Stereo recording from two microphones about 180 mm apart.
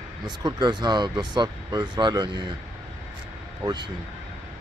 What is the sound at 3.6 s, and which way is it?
Speech, 25° right (ahead or behind).